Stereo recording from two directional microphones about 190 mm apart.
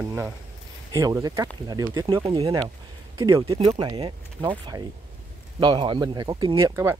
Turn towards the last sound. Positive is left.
turn(degrees=-15)  # may be behind; listen again after turning